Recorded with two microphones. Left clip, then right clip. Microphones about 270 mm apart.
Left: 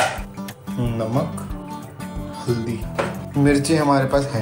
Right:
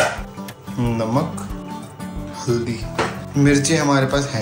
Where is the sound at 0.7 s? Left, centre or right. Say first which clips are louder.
Right 3 dB; centre.